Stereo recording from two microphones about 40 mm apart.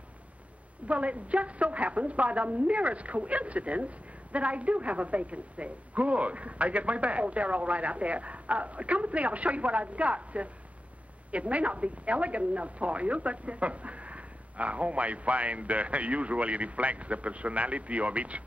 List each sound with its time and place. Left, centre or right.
0.8 s a woman's voice: right